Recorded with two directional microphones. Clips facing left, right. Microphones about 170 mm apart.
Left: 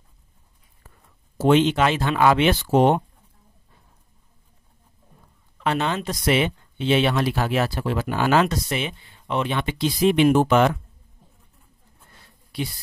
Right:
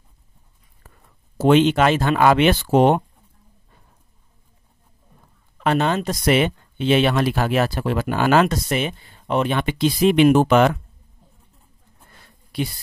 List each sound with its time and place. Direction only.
1.4 s speech: 65° right (ahead or behind)
5.6 s speech: 50° right (ahead or behind); by 10.8 s 75° right (ahead or behind)